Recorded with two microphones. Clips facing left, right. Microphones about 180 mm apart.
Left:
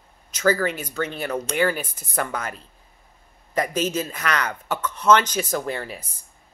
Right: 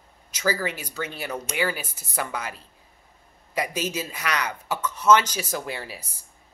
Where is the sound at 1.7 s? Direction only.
50° left (ahead or behind).